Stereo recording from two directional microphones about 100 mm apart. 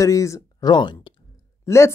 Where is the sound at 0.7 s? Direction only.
50° left (ahead or behind).